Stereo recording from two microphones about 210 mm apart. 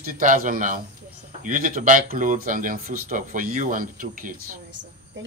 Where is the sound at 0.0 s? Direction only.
40° right (ahead or behind).